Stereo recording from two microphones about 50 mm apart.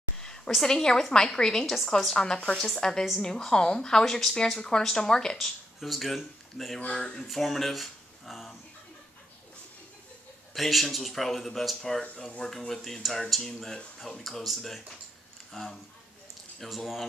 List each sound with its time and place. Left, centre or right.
0.5 s a woman's voice: centre
1.7 s speech: centre
2.1 s a woman's voice: centre
5.8 s speech: centre
6.9 s speech: left
7.2 s speech: centre
10.5 s speech: centre